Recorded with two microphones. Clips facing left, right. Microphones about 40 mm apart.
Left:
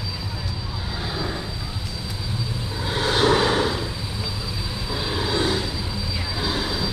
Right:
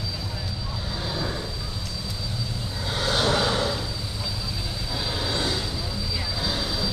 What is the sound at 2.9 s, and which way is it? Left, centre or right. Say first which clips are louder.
Vehicle: left 4 dB; centre.